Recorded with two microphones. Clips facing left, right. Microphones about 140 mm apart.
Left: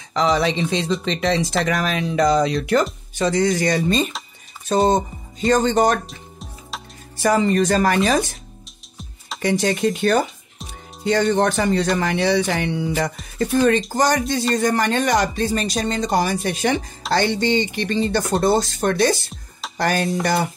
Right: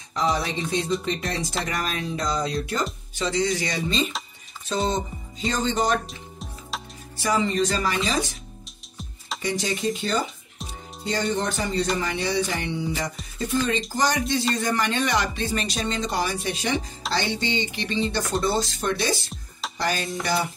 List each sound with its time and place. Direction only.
0.1 s speech: 90° left
3.2 s speech: 55° left (ahead or behind)
6.0 s music: centre (ahead or behind)
7.2 s speech: 50° left (ahead or behind)
9.4 s speech: 60° left (ahead or behind)